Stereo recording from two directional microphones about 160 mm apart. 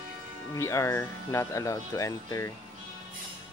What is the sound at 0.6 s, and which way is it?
Speech, 15° left (ahead or behind).